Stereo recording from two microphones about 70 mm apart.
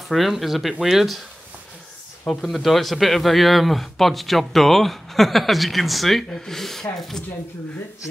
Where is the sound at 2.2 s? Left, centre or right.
Centre.